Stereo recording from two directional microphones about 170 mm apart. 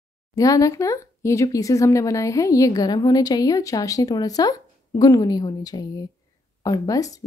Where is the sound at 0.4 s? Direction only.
20° left (ahead or behind).